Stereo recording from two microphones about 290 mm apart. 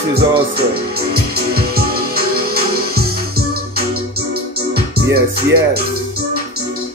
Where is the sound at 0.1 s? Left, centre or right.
Right.